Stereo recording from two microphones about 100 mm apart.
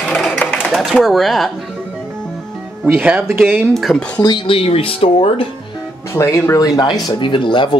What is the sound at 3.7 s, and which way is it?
Speech, centre (ahead or behind).